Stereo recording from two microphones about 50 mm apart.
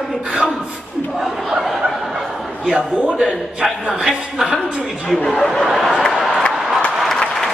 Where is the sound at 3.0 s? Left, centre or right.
Centre.